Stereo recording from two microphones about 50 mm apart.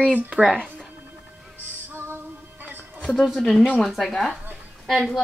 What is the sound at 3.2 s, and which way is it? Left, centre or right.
A woman's voice, centre.